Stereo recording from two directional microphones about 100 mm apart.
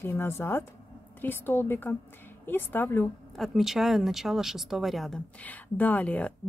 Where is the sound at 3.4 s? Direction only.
Centre (ahead or behind).